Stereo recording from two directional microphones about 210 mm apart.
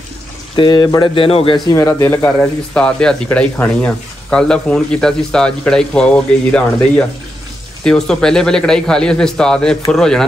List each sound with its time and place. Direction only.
0.6 s speech: 20° left (ahead or behind)
1.8 s speech: 10° left (ahead or behind)
7.8 s speech: 5° left (ahead or behind)